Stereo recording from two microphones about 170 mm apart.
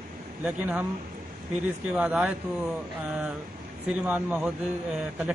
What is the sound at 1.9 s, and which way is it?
Speech, 10° right (ahead or behind).